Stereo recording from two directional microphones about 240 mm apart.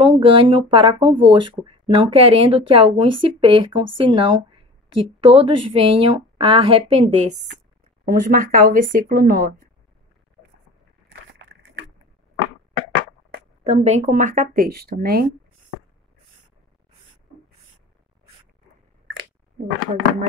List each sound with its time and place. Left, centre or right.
0.1 s speech: right
8.0 s speech: right
13.7 s speech: right